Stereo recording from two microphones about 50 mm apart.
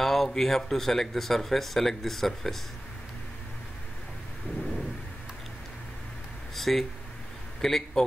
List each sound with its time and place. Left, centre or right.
0.0 s speech: centre
6.5 s a sound: centre
7.6 s speech: centre